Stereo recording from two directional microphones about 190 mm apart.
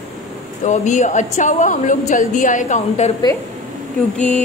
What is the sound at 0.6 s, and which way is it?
A woman's voice, 40° left (ahead or behind).